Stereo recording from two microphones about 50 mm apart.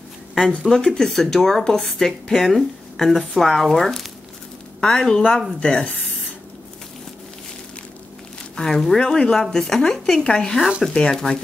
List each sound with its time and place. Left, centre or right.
0.5 s a woman's voice: centre
4.7 s speech: centre
8.5 s speech: centre